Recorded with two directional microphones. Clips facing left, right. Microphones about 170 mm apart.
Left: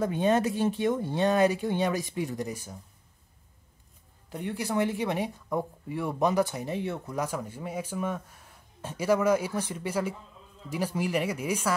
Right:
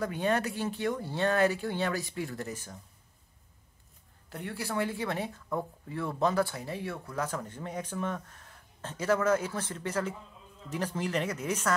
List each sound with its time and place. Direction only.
0.0 s speech: 20° left (ahead or behind)
4.3 s speech: 15° left (ahead or behind)